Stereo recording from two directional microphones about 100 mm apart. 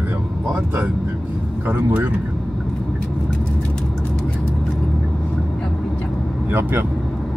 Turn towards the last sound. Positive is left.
turn(degrees=-20)  # may be behind; listen again after turning